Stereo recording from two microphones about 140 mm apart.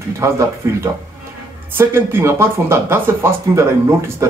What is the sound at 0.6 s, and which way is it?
A man's voice, 20° right (ahead or behind).